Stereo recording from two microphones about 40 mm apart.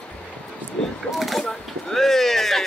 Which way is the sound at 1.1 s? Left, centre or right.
Centre.